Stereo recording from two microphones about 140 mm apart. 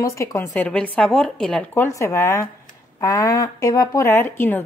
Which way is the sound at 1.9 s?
20° left (ahead or behind).